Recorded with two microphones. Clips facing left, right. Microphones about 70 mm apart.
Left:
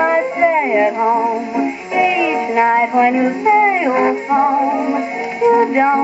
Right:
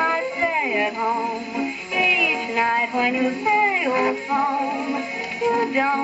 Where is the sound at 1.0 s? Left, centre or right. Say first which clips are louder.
Left 8 dB; centre.